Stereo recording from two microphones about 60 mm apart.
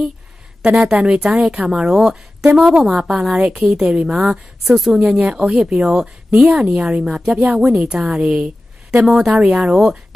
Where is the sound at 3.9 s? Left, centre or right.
Centre.